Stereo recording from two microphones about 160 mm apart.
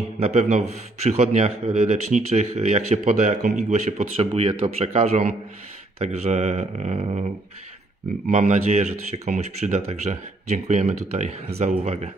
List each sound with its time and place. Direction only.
0.2 s a man's voice: 45° right (ahead or behind)
8.3 s a man's voice: 45° right (ahead or behind)